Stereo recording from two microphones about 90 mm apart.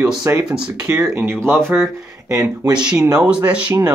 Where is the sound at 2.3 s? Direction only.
40° right (ahead or behind).